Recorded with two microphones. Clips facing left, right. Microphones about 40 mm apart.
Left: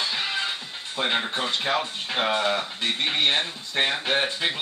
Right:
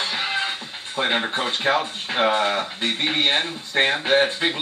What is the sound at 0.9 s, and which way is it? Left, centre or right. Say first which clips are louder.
A man's voice: right 3 dB; centre.